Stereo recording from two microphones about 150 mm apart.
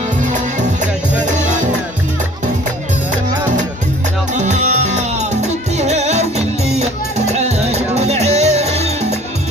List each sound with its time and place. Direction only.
0.2 s music: 55° right (ahead or behind)
4.3 s music: 50° right (ahead or behind)